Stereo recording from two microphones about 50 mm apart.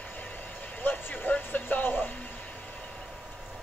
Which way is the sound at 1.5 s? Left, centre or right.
Left.